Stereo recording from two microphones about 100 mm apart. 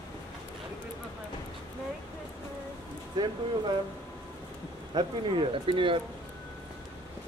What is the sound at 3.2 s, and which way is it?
Speech, 45° right (ahead or behind).